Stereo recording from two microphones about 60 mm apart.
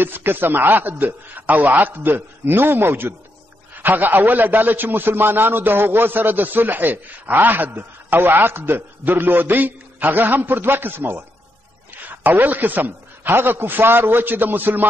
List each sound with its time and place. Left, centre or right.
0.0 s a man's voice: right
11.9 s a man's voice: right